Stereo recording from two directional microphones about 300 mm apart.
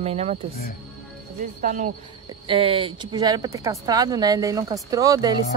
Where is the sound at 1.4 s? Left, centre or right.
Right.